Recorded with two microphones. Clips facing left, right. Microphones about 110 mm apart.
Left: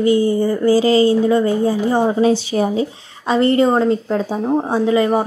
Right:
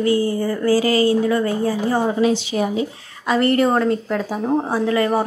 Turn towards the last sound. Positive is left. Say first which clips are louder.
# left 3 dB
turn(degrees=20)  # may be behind; listen again after turning